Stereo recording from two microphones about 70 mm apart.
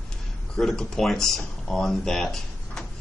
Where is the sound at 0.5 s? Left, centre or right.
Centre.